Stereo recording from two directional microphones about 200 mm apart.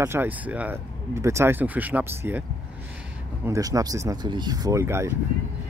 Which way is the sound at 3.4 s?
15° right (ahead or behind).